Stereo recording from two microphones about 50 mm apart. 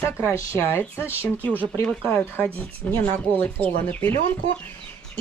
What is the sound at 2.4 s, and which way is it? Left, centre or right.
Speech, left.